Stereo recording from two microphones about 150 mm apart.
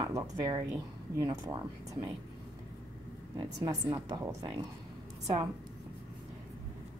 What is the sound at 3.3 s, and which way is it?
Speech, 25° right (ahead or behind).